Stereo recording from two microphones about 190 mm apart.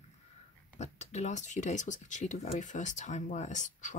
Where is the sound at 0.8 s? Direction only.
35° left (ahead or behind).